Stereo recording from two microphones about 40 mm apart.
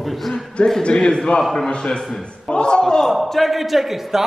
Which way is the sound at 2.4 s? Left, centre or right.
Left.